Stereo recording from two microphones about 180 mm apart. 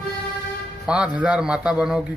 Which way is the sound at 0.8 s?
5° right (ahead or behind).